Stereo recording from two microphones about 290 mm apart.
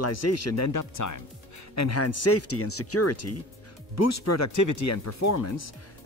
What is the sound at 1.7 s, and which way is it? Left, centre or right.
Speech, left.